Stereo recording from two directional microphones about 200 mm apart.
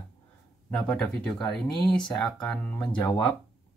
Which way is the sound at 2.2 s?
5° left (ahead or behind).